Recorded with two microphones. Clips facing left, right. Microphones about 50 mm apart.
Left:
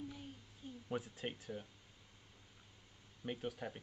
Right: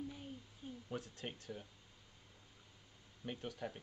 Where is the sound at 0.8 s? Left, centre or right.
Centre.